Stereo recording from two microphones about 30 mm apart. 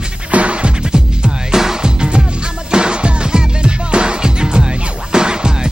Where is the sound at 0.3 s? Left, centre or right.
Right.